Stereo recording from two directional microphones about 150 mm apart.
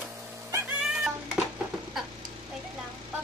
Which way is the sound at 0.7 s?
5° right (ahead or behind).